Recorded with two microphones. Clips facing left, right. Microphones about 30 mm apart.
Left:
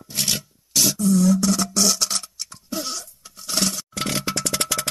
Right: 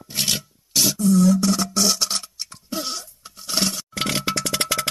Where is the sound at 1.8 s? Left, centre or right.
Centre.